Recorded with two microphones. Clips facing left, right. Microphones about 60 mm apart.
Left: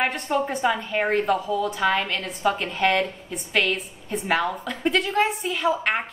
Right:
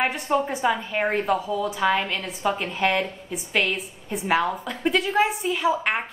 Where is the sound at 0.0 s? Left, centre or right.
Centre.